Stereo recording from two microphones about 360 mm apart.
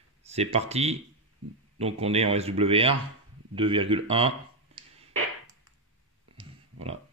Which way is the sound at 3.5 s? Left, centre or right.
Centre.